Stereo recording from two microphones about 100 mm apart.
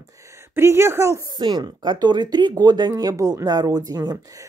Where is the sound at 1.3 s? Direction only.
45° right (ahead or behind).